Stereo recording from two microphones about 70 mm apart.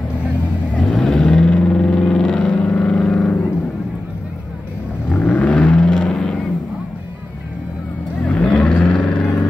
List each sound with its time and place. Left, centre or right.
0.7 s vehicle: centre
5.1 s vehicle: left
8.2 s vehicle: centre